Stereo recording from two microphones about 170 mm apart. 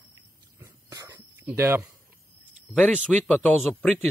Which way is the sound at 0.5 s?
20° right (ahead or behind).